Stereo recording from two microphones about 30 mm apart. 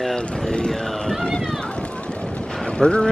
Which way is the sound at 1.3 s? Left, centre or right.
Left.